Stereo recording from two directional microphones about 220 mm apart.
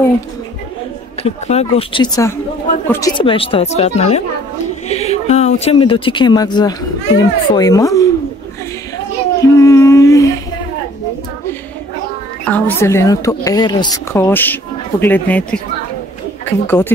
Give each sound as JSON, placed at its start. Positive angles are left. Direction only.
{"t": 1.2, "sound": "a woman's voice", "side_deg": 30}
{"t": 9.4, "sound": "a sound", "side_deg": 15}
{"t": 12.4, "sound": "a woman's voice", "side_deg": 10}
{"t": 16.6, "sound": "a woman's voice", "side_deg": 10}